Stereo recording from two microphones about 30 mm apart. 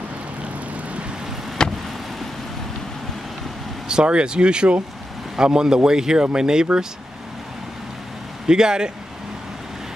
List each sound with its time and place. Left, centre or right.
1.6 s vehicle: left
3.9 s speech: right
5.3 s speech: right
8.5 s speech: right